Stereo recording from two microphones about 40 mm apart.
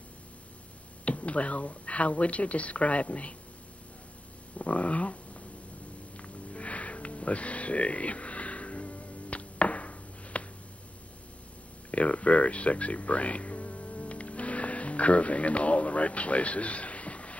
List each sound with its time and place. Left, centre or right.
1.0 s speech: left
4.6 s speech: left
6.1 s sniff: left
11.9 s speech: left